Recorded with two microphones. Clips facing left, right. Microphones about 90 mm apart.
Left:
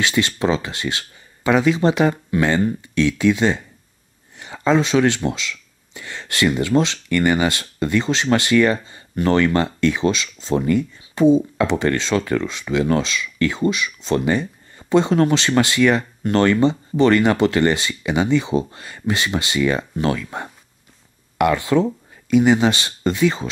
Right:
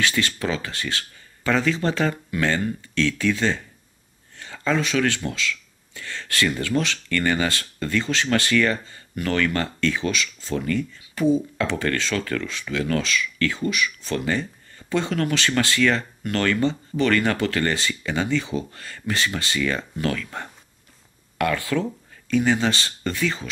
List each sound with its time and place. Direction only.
0.0 s speech: 20° left (ahead or behind)